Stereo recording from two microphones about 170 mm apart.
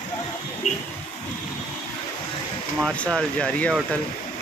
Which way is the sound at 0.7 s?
45° left (ahead or behind).